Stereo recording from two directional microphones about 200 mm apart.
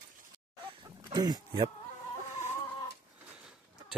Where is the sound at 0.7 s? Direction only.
25° right (ahead or behind).